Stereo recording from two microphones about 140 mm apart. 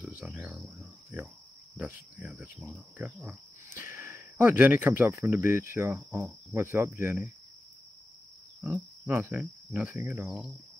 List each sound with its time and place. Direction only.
0.2 s cricket: centre (ahead or behind)
3.0 s speech: 10° right (ahead or behind)
9.0 s speech: 15° right (ahead or behind)
9.7 s cricket: 5° right (ahead or behind)
9.9 s speech: 15° right (ahead or behind)
10.2 s speech: centre (ahead or behind)